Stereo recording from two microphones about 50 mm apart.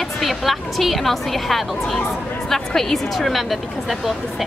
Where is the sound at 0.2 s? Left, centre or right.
Centre.